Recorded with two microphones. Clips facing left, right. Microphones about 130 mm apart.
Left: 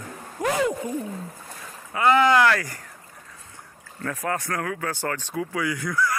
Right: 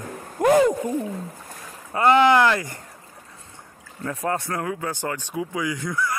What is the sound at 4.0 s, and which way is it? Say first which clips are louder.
Speech: right 2 dB; 25° right (ahead or behind).